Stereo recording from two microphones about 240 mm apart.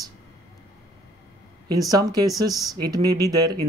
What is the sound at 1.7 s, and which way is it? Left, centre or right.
Speech, centre.